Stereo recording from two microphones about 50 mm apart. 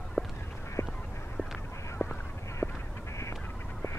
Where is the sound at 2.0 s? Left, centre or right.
Left.